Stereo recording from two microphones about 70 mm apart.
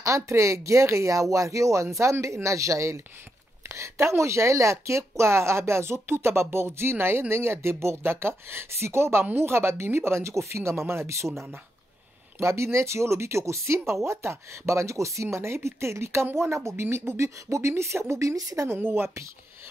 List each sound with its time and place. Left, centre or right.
0.0 s speech: right
18.3 s speech: right
18.7 s speech: right